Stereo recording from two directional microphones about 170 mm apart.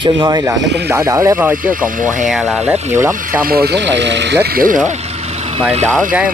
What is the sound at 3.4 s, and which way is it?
Speech, 65° right (ahead or behind).